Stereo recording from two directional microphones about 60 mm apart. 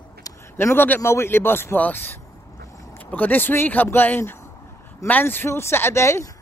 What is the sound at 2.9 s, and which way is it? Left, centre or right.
Speech, left.